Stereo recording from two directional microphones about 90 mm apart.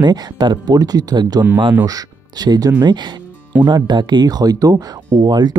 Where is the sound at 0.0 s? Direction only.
50° right (ahead or behind).